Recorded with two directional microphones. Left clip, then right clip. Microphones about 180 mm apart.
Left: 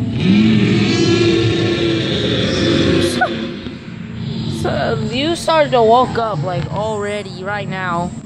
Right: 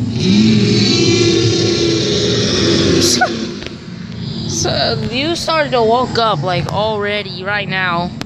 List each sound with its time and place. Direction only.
0.2 s vehicle: 30° left (ahead or behind)
2.4 s music: 20° left (ahead or behind)
4.6 s a sound: 10° left (ahead or behind)
6.2 s speech: 10° right (ahead or behind)